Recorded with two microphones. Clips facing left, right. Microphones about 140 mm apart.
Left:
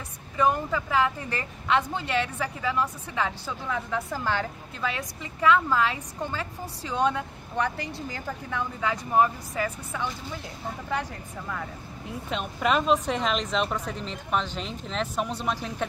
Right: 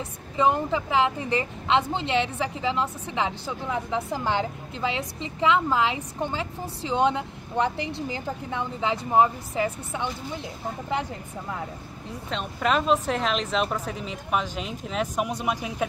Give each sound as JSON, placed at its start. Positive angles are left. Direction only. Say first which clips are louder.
{"t": 0.4, "sound": "a woman's voice", "louder": "right 2 dB", "side_deg": -20}
{"t": 12.3, "sound": "speech", "louder": "even", "side_deg": 5}